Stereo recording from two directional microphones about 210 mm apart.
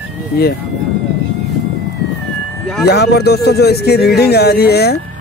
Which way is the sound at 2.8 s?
50° left (ahead or behind).